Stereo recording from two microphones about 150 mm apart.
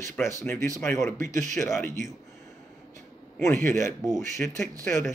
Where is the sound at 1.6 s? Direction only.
15° left (ahead or behind).